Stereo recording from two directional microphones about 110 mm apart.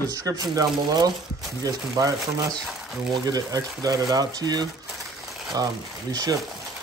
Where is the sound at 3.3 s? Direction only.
35° right (ahead or behind).